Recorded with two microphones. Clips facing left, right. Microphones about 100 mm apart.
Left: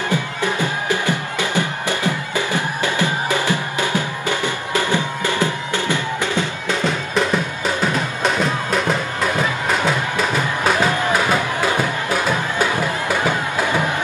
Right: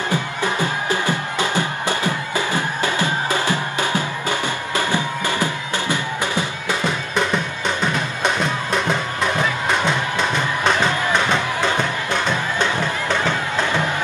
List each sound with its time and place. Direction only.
0.6 s music: 20° left (ahead or behind)
5.4 s music: 15° right (ahead or behind)
7.2 s music: 5° left (ahead or behind)